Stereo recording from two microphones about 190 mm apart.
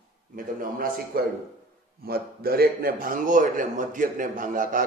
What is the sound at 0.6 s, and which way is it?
A man's voice, 50° right (ahead or behind).